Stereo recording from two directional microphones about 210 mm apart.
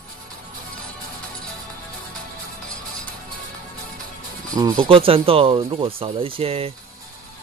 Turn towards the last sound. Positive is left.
turn(degrees=-25)  # may be behind; listen again after turning